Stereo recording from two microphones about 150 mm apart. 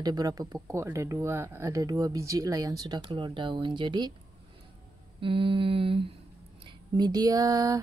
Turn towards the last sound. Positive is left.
turn(degrees=-25)  # may be behind; listen again after turning